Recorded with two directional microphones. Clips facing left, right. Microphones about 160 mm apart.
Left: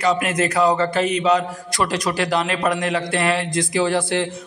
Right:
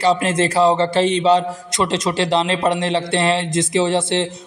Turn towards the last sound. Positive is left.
turn(degrees=-25)  # may be behind; listen again after turning